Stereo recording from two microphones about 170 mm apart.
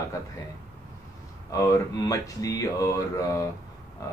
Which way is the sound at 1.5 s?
20° left (ahead or behind).